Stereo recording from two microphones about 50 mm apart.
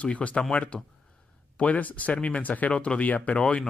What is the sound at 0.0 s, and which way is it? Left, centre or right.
A man's voice, left.